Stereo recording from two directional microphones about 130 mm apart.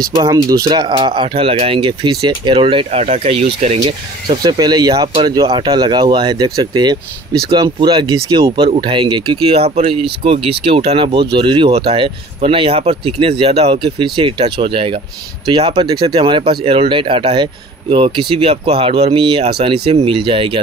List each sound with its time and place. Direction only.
0.1 s speech: 30° right (ahead or behind); by 3.9 s 55° right (ahead or behind)
4.3 s speech: 35° right (ahead or behind)
8.5 s speech: 45° right (ahead or behind)